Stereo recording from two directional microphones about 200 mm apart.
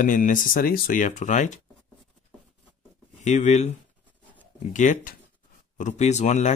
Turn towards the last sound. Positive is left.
turn(degrees=35)  # may be behind; listen again after turning